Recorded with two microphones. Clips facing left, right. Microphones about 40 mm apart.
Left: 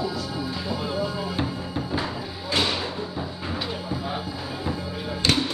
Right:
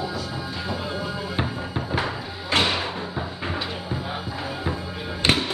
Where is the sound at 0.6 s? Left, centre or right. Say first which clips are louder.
Left 1 dB; centre.